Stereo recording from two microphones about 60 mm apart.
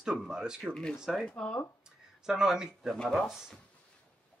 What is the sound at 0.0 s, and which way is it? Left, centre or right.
Speech, centre.